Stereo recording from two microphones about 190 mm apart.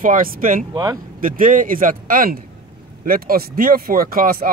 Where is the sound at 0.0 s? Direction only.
45° right (ahead or behind).